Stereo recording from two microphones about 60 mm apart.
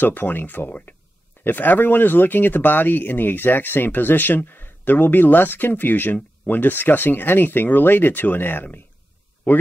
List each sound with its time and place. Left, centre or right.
0.0 s speech: left